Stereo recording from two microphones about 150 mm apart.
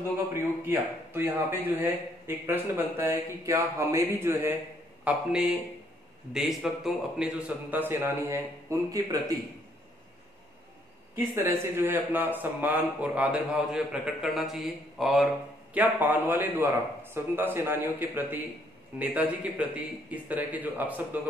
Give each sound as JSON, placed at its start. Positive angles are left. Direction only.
{"t": 0.4, "sound": "speech", "side_deg": -15}
{"t": 5.0, "sound": "a man's voice", "side_deg": -5}
{"t": 11.1, "sound": "speech", "side_deg": -15}